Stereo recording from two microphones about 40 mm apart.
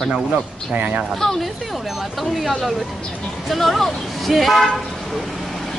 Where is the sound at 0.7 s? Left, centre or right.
Right.